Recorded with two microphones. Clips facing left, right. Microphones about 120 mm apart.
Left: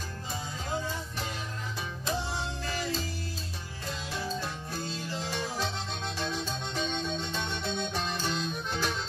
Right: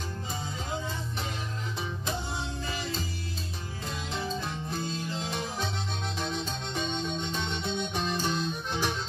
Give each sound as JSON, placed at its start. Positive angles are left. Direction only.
{"t": 4.1, "sound": "music", "side_deg": -20}
{"t": 6.1, "sound": "music", "side_deg": -20}